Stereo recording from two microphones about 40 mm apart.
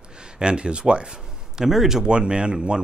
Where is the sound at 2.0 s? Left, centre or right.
Right.